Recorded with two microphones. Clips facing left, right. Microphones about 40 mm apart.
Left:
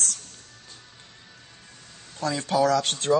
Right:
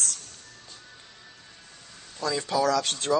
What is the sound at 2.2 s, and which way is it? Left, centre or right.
Speech, left.